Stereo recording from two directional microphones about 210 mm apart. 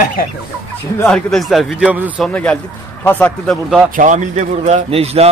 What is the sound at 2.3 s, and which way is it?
Speech, 5° left (ahead or behind).